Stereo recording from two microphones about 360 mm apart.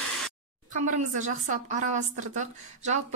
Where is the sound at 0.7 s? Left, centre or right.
Centre.